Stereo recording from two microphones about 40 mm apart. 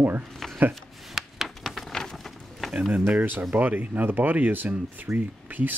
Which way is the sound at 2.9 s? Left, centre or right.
Right.